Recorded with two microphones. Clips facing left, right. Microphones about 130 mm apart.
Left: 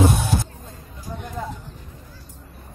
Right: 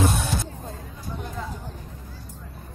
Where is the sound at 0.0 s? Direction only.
15° left (ahead or behind).